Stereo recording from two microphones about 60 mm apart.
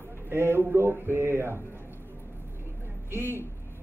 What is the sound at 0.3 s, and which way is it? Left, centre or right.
A man's voice, right.